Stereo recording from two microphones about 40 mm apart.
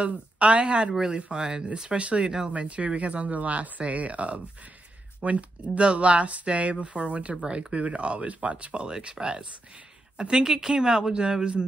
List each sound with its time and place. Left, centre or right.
0.0 s speech: right